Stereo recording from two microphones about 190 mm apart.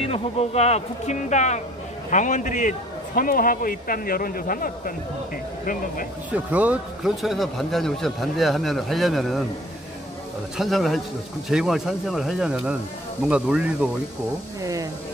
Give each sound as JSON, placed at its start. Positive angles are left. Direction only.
{"t": 0.0, "sound": "speech", "side_deg": 30}
{"t": 6.3, "sound": "speech", "side_deg": -10}
{"t": 10.6, "sound": "speech", "side_deg": 0}
{"t": 14.6, "sound": "speech", "side_deg": -20}